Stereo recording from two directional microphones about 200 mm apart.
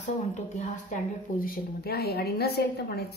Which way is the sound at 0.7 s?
40° left (ahead or behind).